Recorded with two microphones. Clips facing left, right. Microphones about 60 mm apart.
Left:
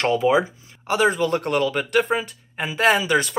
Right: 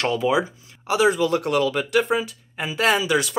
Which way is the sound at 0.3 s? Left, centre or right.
Left.